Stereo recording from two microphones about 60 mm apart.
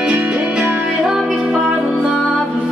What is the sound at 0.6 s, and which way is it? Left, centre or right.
Music, centre.